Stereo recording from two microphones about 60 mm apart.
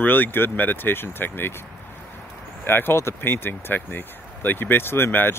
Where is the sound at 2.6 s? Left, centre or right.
Left.